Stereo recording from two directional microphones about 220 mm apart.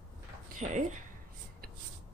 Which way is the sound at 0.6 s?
35° right (ahead or behind).